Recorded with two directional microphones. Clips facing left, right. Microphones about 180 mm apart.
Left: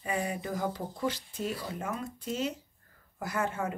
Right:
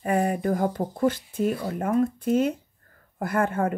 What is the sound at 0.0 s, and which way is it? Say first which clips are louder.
Speech: right 9 dB; 55° right (ahead or behind).